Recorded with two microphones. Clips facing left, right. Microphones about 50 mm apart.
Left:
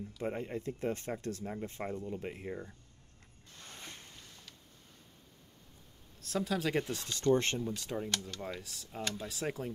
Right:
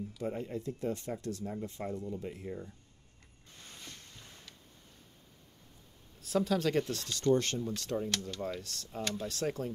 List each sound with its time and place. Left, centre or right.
0.2 s speech: left
3.7 s boat: left
6.2 s speech: centre
7.3 s speech: left
7.6 s speech: centre